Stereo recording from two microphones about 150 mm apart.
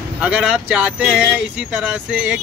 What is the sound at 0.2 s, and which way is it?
Speech, 5° right (ahead or behind).